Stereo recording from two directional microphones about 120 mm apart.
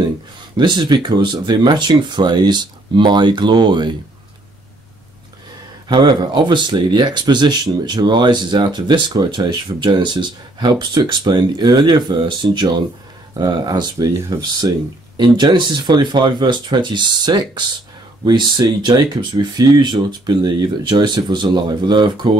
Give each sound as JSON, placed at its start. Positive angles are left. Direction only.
{"t": 0.6, "sound": "speech", "side_deg": -35}
{"t": 5.9, "sound": "speech", "side_deg": -40}